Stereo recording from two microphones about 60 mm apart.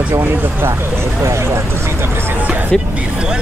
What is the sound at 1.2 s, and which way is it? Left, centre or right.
Speech, right.